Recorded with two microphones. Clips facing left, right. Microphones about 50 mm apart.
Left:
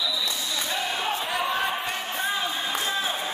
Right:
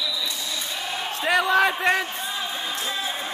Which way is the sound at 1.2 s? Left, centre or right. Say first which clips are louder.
Right 12 dB; right.